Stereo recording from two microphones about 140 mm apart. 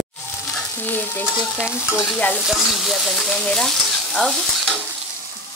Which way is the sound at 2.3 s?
5° right (ahead or behind).